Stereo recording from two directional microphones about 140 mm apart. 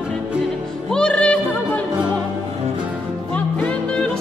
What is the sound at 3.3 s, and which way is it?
Music, 10° left (ahead or behind).